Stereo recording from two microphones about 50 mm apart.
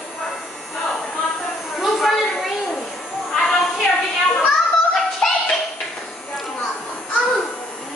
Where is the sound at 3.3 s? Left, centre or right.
Centre.